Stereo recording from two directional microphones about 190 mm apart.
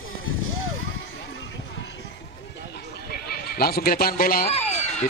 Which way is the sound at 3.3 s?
50° left (ahead or behind).